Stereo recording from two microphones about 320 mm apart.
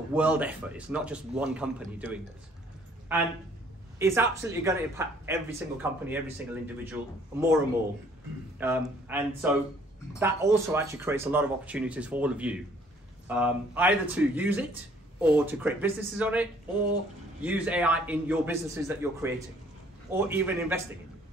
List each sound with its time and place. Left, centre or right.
0.1 s speech: centre
4.0 s speech: centre
8.5 s speech: centre